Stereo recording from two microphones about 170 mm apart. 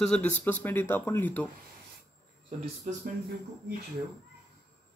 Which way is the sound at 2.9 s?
50° right (ahead or behind).